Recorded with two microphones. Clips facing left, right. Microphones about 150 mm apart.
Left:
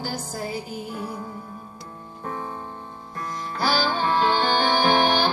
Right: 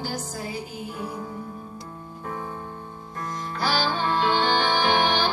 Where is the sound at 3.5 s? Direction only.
40° left (ahead or behind).